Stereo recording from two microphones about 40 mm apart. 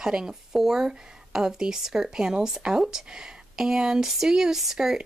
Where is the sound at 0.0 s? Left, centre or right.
Centre.